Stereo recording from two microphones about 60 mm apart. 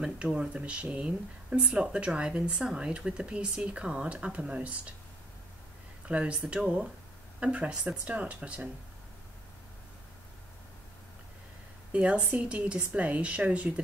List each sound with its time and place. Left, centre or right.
0.0 s speech: centre
6.0 s speech: centre
11.9 s speech: right